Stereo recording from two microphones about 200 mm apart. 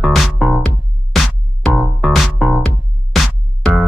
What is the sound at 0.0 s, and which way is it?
Music, centre (ahead or behind).